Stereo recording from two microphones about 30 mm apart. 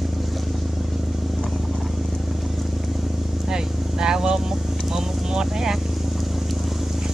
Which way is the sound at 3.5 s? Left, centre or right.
Right.